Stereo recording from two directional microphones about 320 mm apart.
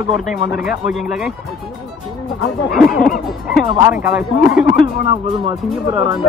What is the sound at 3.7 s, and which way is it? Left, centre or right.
Speech, centre.